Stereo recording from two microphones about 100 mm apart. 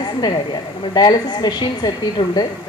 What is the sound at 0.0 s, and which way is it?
A woman's voice, 50° left (ahead or behind).